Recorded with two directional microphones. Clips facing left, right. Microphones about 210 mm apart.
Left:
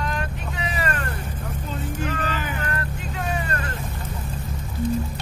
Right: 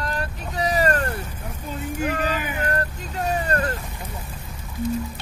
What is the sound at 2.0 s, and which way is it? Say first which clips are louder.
Vehicle: right 5 dB; 10° right (ahead or behind).